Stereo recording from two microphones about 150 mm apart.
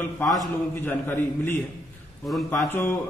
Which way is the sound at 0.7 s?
15° left (ahead or behind).